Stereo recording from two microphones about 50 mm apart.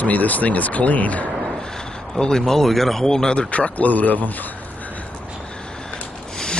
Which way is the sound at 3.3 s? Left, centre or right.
Left.